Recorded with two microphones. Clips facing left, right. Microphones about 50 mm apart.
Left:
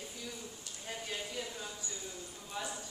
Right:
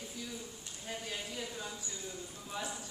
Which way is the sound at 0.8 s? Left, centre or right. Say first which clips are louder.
Even; centre.